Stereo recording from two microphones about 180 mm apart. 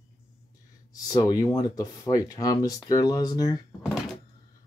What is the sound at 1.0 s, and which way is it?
Speech, 20° left (ahead or behind).